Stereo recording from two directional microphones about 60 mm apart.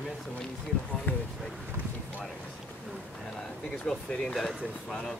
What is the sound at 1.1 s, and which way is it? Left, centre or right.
Speech, left.